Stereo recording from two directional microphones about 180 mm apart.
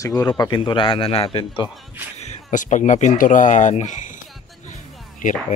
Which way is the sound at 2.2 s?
40° left (ahead or behind).